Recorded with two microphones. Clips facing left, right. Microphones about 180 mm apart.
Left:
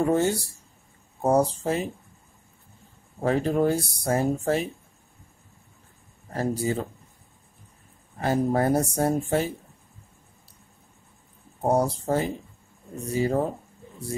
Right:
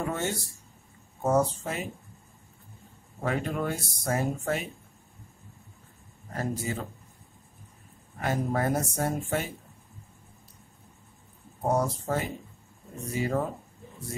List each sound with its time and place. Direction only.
0.0 s speech: 35° left (ahead or behind)
3.2 s speech: 30° left (ahead or behind)
6.3 s speech: 30° left (ahead or behind)
8.2 s speech: 30° left (ahead or behind)
11.6 s speech: 30° left (ahead or behind)